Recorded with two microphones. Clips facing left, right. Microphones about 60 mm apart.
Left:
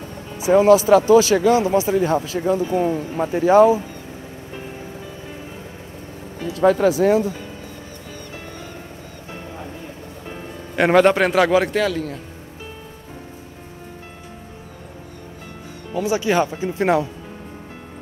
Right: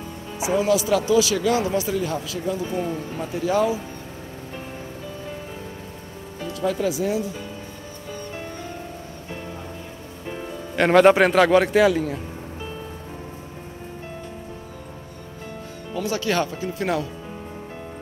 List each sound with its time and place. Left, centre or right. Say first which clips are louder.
0.5 s speech: left 8 dB; left
6.5 s speech: left 8 dB; left
10.8 s a man's voice: even; centre
15.9 s speech: left 4 dB; centre